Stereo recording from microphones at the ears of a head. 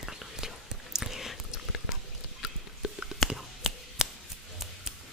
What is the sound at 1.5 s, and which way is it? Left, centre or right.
Chewing, left.